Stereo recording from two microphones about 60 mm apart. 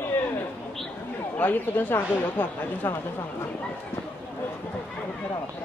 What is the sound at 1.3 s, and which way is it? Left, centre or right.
Speech, left.